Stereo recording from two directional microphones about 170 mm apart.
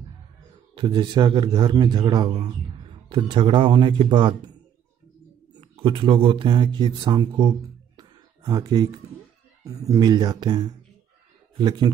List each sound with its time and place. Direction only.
0.7 s a man's voice: 25° right (ahead or behind)
5.5 s a man's voice: 30° right (ahead or behind)